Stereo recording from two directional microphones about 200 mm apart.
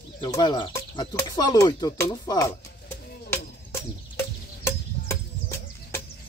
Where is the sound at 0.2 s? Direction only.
20° left (ahead or behind).